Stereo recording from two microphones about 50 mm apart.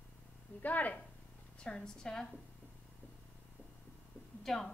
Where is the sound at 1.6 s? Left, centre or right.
Centre.